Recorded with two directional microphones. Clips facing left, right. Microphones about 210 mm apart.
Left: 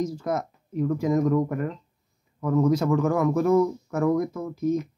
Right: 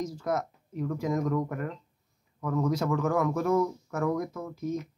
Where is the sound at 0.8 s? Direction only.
10° left (ahead or behind).